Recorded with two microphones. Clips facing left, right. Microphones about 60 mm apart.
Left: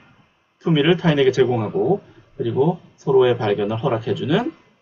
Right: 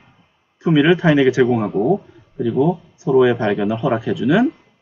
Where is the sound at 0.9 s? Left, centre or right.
Centre.